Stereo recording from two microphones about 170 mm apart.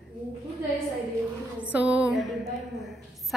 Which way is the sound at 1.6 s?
10° right (ahead or behind).